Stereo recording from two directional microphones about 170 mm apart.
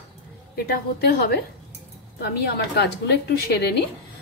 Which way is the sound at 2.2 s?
80° left.